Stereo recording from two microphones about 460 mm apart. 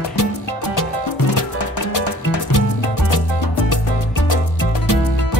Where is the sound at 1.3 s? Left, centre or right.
Left.